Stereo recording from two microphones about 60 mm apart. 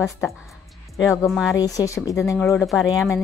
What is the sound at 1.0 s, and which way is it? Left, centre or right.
Speech, left.